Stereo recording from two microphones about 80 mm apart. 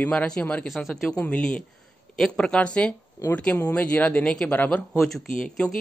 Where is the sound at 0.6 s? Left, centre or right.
Centre.